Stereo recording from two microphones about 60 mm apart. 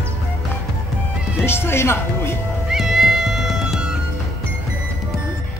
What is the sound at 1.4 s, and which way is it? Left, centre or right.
Speech, left.